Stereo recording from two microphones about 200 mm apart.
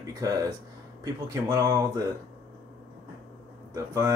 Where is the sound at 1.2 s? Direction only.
15° right (ahead or behind).